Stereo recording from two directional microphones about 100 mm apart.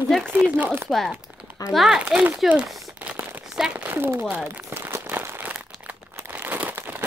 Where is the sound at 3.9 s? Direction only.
20° right (ahead or behind).